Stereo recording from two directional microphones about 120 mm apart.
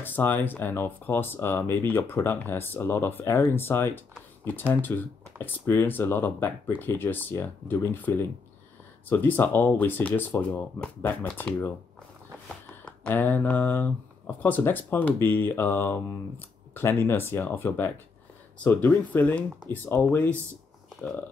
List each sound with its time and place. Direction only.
0.0 s speech: 15° left (ahead or behind)
12.8 s speech: 15° left (ahead or behind)